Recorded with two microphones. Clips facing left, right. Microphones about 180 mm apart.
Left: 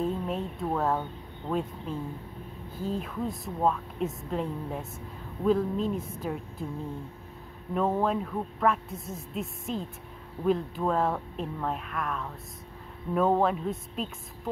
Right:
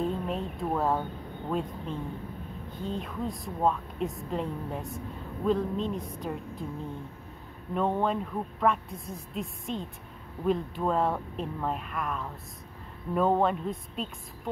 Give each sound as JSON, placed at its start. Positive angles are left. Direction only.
{"t": 0.0, "sound": "a woman's voice", "side_deg": 0}
{"t": 7.7, "sound": "a woman's voice", "side_deg": 0}